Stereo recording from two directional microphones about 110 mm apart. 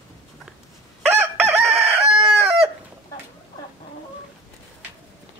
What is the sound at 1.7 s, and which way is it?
Chicken, 70° right (ahead or behind).